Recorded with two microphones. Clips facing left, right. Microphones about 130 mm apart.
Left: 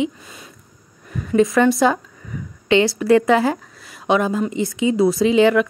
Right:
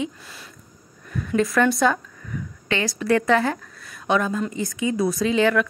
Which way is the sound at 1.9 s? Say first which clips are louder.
Left 3 dB; 20° left (ahead or behind).